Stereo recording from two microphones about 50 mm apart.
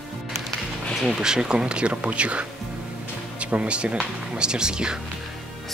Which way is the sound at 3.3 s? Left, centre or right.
Right.